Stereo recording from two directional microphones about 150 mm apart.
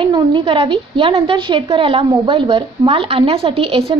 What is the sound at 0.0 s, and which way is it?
A woman's voice, 35° right (ahead or behind).